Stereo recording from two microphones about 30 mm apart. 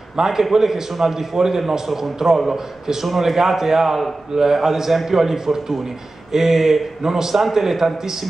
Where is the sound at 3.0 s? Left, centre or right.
Centre.